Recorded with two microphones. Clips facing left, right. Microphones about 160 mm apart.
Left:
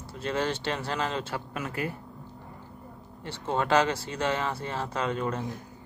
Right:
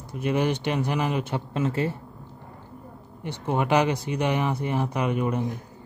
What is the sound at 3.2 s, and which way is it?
Speech, 15° right (ahead or behind).